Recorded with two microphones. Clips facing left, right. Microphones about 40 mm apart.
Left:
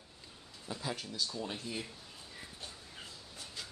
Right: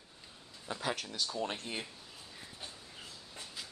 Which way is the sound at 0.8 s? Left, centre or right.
Right.